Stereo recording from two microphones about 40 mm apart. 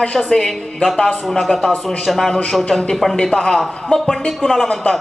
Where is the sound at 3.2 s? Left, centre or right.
Left.